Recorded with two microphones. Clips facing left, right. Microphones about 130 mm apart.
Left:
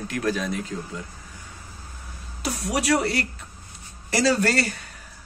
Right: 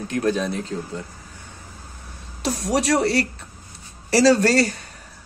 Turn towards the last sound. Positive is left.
turn(degrees=-30)  # may be behind; listen again after turning